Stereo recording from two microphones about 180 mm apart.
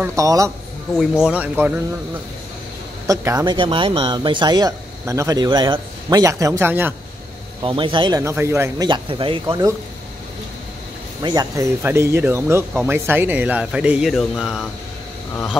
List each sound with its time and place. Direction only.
0.0 s speech: 15° right (ahead or behind)
1.2 s speech: 10° right (ahead or behind)
3.1 s speech: 20° right (ahead or behind)
7.6 s speech: 30° right (ahead or behind)
8.2 s speech: 15° right (ahead or behind)
8.8 s speech: 25° right (ahead or behind)
11.2 s speech: 20° right (ahead or behind); by 14.7 s centre (ahead or behind)